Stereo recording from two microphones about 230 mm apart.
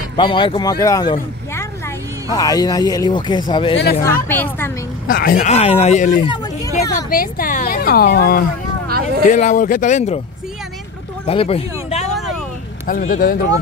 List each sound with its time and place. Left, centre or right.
0.1 s speech: left
4.0 s speech: centre
5.0 s a woman's voice: left
6.2 s vehicle: centre
7.1 s a woman's voice: left
11.2 s a woman's voice: left